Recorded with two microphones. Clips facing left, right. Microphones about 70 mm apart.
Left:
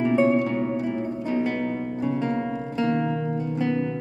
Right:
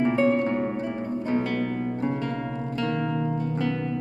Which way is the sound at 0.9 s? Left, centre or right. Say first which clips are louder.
Even; right.